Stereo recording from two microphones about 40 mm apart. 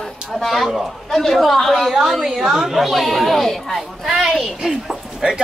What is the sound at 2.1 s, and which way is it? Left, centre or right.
A woman's voice, centre.